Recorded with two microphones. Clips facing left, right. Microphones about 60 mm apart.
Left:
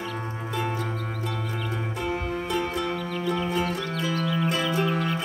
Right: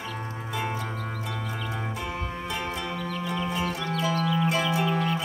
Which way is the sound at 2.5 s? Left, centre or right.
Right.